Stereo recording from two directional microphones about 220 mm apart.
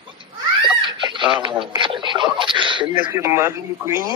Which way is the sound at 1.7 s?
20° right (ahead or behind).